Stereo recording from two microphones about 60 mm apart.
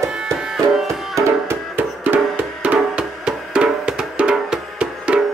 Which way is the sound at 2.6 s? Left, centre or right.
Right.